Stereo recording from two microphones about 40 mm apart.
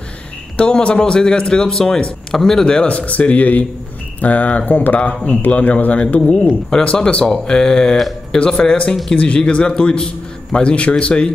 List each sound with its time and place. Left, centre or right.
0.6 s speech: left
2.3 s speech: centre
2.9 s speech: left
6.7 s speech: left